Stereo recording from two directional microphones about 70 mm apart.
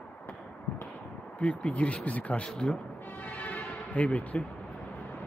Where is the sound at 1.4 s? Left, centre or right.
Centre.